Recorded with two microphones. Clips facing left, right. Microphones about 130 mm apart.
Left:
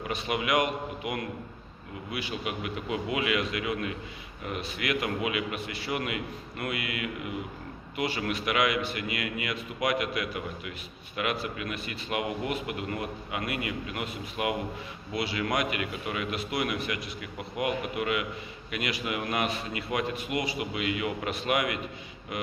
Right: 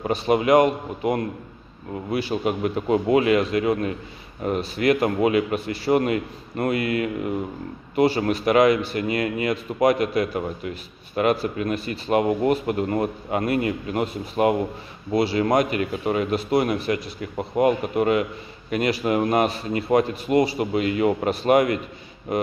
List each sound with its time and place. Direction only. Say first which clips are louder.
0.0 s a man's voice: right 10 dB; 35° right (ahead or behind)